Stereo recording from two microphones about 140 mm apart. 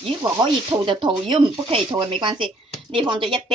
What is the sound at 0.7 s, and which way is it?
Speech, 40° right (ahead or behind).